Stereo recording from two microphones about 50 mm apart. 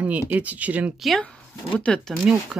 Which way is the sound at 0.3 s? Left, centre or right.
Right.